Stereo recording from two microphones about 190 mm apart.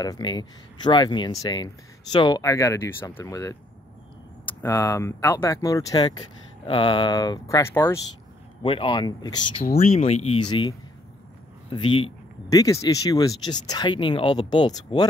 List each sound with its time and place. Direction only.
0.0 s speech: 20° left (ahead or behind)
4.6 s speech: 15° left (ahead or behind)
8.6 s speech: 25° left (ahead or behind)
9.8 s speech: 35° left (ahead or behind)
11.7 s speech: 25° left (ahead or behind)